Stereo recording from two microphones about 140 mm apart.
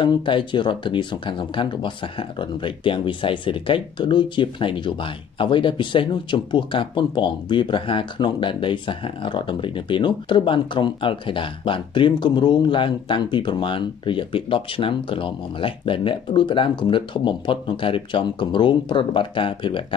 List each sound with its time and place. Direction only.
0.0 s speech: 35° left (ahead or behind)